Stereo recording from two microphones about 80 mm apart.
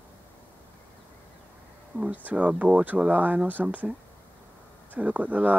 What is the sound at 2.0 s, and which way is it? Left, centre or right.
Speech, centre.